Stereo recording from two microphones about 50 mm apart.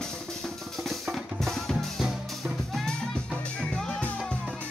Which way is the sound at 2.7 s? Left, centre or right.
Centre.